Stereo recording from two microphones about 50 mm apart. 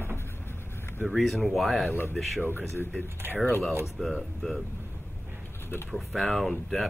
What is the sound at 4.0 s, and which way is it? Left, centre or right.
Speech, centre.